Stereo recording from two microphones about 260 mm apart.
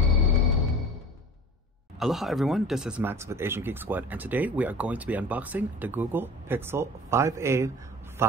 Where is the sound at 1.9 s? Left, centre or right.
Centre.